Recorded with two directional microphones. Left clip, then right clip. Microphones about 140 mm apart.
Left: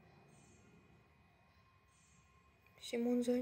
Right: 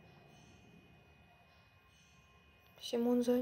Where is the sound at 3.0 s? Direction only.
10° left (ahead or behind).